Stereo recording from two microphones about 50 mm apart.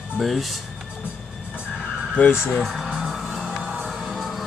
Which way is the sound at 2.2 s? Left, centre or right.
Left.